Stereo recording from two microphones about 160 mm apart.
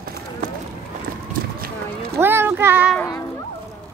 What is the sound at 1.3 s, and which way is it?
Run, 65° right (ahead or behind).